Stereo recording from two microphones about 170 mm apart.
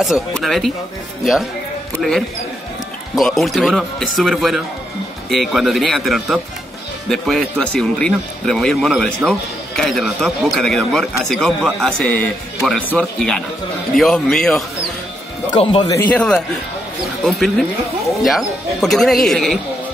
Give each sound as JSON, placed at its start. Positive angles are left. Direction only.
{"t": 0.0, "sound": "speech", "side_deg": 0}
{"t": 15.5, "sound": "speech", "side_deg": 30}
{"t": 15.9, "sound": "a man's voice", "side_deg": 10}